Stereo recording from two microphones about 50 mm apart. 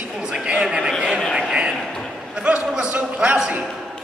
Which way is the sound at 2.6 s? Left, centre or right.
Centre.